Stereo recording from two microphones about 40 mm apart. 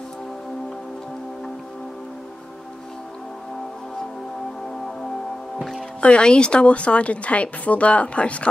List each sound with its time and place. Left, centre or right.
5.6 s music: centre
5.9 s a woman's voice: left